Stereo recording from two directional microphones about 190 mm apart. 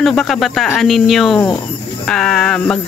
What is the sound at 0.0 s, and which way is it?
Speech, centre (ahead or behind).